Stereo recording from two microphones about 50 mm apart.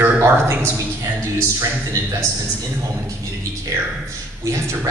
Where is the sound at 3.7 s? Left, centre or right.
Right.